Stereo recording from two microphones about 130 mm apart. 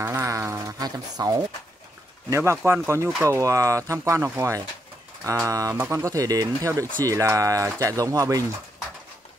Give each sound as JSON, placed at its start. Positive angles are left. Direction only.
{"t": 0.0, "sound": "speech", "side_deg": -20}